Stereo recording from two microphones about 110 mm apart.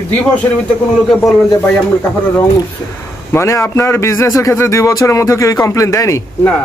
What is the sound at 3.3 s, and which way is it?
Speech, 25° left (ahead or behind).